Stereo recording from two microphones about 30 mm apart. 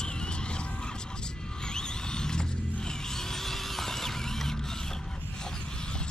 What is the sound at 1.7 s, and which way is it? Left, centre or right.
Mechanisms, left.